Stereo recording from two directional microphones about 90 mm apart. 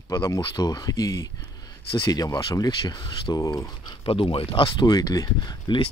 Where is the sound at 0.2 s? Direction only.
50° left (ahead or behind).